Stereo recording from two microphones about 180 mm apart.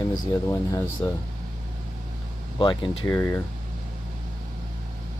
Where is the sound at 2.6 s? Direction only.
25° left (ahead or behind).